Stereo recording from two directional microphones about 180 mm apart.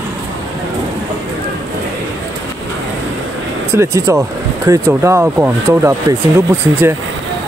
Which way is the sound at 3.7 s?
15° right (ahead or behind).